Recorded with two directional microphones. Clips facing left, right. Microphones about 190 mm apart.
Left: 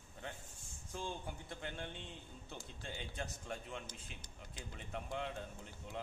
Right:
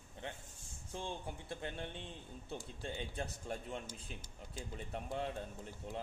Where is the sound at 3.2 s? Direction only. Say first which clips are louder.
Right 3 dB; 40° right (ahead or behind).